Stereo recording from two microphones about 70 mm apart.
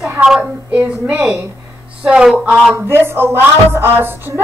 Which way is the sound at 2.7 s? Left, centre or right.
Right.